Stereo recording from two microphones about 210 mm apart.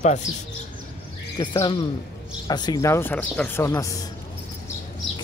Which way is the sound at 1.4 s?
20° left (ahead or behind).